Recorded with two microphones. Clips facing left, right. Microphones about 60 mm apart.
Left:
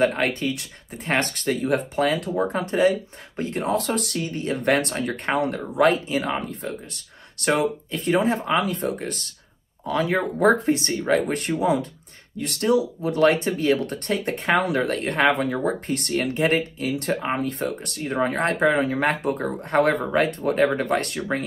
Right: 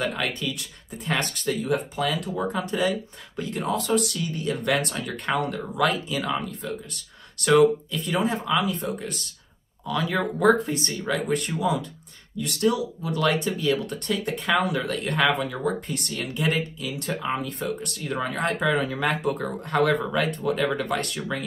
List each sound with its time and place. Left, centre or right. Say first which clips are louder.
0.0 s speech: left 6 dB; left
3.8 s speech: right 1 dB; left